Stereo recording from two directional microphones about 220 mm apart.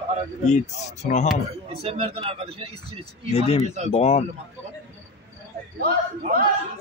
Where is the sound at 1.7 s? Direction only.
25° right (ahead or behind).